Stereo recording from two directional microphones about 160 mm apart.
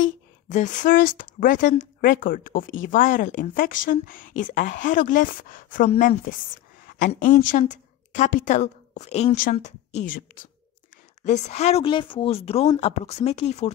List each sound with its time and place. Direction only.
0.0 s a woman's voice: 50° left (ahead or behind)
9.3 s a woman's voice: 60° left (ahead or behind)
11.2 s speech: 45° left (ahead or behind)